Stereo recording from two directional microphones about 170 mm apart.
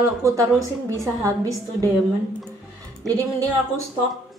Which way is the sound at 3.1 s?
20° right (ahead or behind).